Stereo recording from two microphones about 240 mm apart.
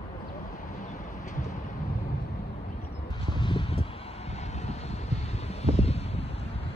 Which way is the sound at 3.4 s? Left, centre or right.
Centre.